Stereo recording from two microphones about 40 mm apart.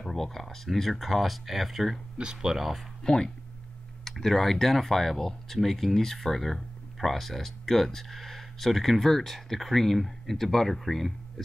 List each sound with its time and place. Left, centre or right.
0.0 s speech: centre
2.1 s speech: centre
3.0 s speech: centre
4.0 s speech: centre